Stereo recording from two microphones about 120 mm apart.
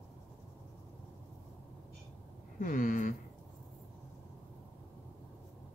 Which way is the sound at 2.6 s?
90° left.